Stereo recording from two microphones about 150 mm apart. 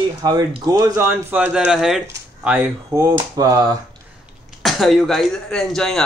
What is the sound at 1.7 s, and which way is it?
Speech, centre (ahead or behind).